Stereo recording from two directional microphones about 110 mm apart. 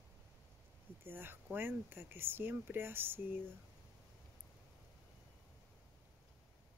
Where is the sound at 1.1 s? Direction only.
20° right (ahead or behind).